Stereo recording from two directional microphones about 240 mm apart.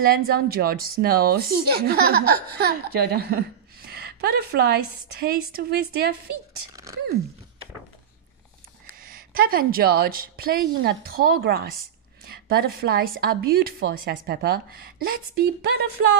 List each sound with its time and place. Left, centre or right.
0.0 s speech: right
9.0 s speech: right